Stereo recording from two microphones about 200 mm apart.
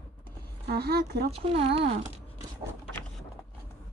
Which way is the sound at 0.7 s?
50° right (ahead or behind).